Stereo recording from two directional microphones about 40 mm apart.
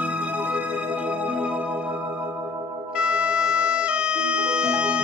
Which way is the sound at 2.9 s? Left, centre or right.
Right.